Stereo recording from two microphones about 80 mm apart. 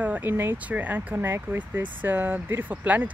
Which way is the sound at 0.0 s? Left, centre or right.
Right.